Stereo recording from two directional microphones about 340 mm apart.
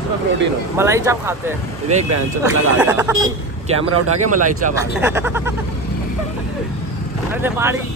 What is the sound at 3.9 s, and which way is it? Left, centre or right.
Speech, right.